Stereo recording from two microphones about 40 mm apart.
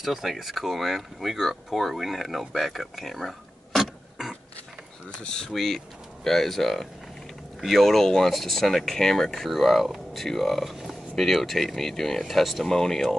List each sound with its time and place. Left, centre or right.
0.0 s speech: centre
5.2 s speech: centre
5.5 s speech: centre